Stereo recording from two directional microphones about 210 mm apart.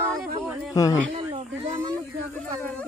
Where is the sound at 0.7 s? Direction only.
15° left (ahead or behind).